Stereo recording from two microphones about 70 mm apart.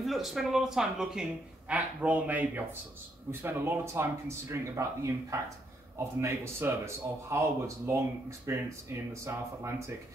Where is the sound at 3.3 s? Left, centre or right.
Right.